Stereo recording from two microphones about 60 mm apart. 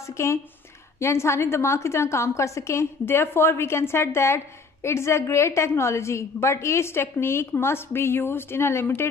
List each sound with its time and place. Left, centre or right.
0.0 s a woman's voice: left